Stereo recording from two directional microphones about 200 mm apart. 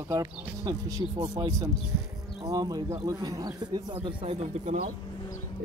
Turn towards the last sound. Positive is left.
turn(degrees=-35)  # may be behind; listen again after turning